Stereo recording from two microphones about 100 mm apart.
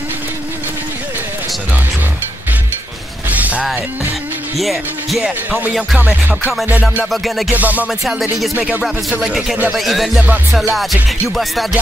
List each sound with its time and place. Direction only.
3.3 s music: 15° right (ahead or behind)
4.6 s music: centre (ahead or behind)
5.5 s music: 15° right (ahead or behind)
7.1 s music: centre (ahead or behind)
7.5 s music: 15° right (ahead or behind)
8.0 s music: centre (ahead or behind)
8.5 s music: 10° right (ahead or behind)